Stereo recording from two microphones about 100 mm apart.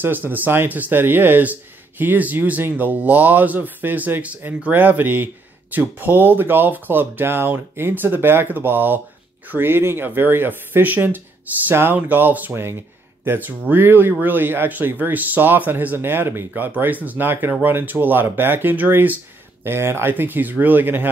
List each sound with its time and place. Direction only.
0.0 s speech: 20° right (ahead or behind)